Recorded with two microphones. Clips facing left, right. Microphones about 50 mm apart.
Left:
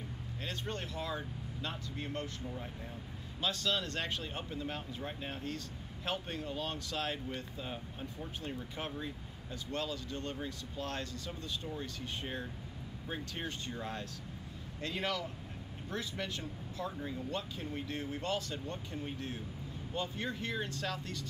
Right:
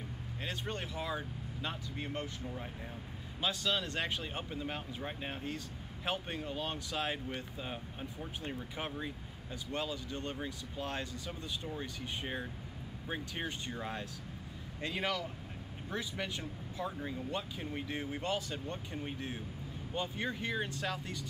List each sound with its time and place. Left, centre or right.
0.5 s speech: centre
3.3 s speech: centre